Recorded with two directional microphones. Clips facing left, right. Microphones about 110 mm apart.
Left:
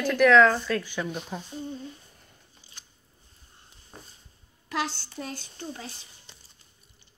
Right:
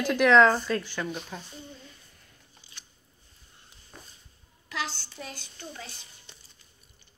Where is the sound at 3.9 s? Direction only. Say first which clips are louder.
Left 2 dB; 30° left (ahead or behind).